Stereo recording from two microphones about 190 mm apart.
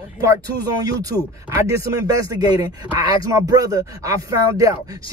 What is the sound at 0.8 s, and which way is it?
Speech, 20° right (ahead or behind).